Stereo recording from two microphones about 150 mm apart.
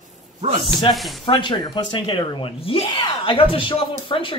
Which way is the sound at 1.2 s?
35° left (ahead or behind).